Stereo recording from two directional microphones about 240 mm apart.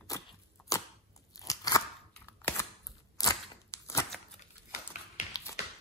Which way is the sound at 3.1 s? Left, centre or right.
Centre.